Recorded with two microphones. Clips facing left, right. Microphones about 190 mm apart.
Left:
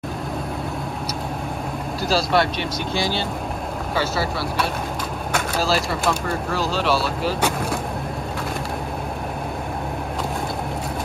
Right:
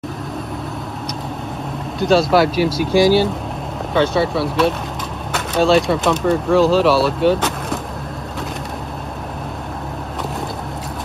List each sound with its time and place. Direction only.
2.0 s speech: centre (ahead or behind)
3.9 s speech: 5° left (ahead or behind)